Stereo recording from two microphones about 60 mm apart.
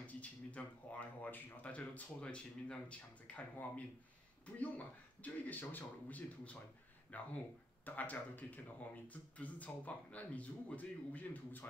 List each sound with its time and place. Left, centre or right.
0.0 s speech: left